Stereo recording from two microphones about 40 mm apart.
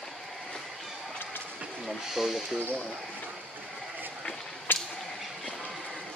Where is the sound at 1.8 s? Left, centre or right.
Centre.